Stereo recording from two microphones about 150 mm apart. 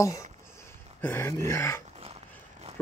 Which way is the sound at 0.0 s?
20° left (ahead or behind).